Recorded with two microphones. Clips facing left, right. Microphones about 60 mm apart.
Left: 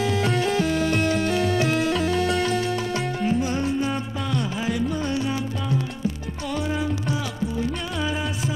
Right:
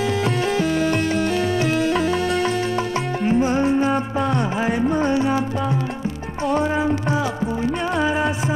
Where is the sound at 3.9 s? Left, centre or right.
Right.